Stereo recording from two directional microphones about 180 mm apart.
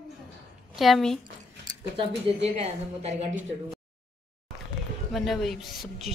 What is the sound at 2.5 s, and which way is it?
Speech, 35° right (ahead or behind).